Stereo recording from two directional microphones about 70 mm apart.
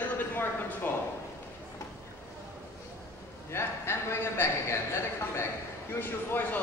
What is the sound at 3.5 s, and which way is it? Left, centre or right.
A man's voice, left.